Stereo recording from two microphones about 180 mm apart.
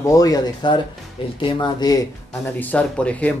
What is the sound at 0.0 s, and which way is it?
Speech, 20° left (ahead or behind).